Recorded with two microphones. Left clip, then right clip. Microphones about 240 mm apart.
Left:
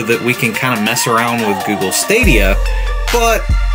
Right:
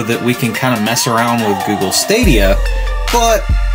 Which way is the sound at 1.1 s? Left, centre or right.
Centre.